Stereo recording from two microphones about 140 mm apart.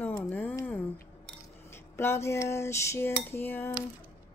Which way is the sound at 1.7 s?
15° left (ahead or behind).